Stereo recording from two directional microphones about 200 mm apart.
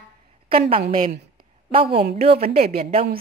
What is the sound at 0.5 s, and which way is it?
A woman's voice, 25° right (ahead or behind).